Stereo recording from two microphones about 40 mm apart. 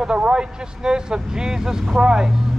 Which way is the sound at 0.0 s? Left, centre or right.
Right.